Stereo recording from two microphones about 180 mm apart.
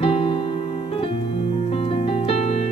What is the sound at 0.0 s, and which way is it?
Music, 30° left (ahead or behind).